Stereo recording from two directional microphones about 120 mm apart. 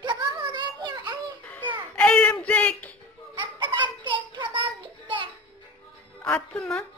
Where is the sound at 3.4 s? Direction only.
40° right (ahead or behind).